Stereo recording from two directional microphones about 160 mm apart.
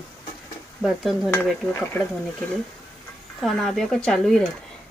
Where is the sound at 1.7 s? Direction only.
10° left (ahead or behind).